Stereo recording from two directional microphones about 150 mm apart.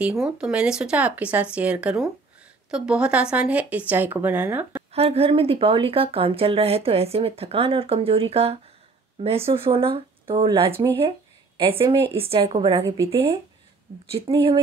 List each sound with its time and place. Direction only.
0.0 s speech: 5° right (ahead or behind)
4.9 s speech: 40° right (ahead or behind)
12.8 s speech: 20° right (ahead or behind)
14.1 s speech: 35° right (ahead or behind)